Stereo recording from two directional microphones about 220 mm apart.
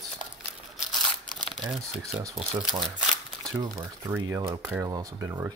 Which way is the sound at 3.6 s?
15° right (ahead or behind).